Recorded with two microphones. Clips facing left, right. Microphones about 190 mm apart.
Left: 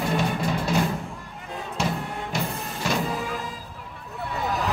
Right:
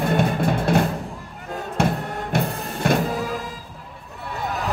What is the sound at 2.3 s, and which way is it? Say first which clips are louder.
Printer: right 7 dB; 55° right (ahead or behind).